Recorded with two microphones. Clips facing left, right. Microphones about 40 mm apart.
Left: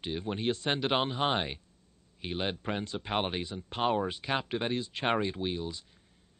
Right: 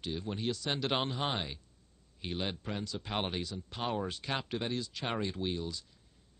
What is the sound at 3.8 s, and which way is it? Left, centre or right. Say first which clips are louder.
Speech: left 6 dB; left.